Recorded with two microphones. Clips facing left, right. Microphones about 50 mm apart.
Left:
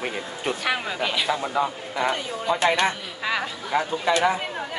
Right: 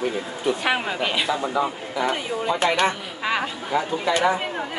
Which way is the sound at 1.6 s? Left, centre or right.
Centre.